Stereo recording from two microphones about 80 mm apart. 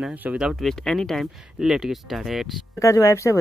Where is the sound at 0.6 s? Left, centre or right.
Centre.